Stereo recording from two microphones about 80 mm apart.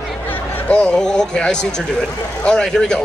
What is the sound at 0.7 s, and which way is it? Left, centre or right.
A man's voice, centre.